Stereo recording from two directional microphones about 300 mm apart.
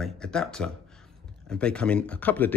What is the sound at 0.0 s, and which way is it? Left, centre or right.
Speech, centre.